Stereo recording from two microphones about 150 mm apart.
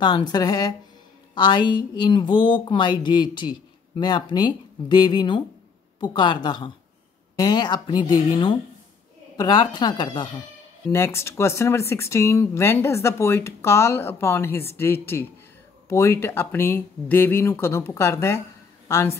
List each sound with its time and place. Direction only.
0.0 s a woman's voice: 30° left (ahead or behind)
11.1 s a woman's voice: 20° left (ahead or behind)